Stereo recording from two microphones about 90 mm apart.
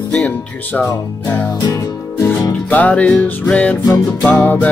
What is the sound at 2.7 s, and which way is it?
Music, 15° left (ahead or behind).